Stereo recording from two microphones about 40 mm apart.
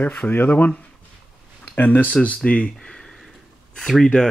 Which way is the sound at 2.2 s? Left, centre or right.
Left.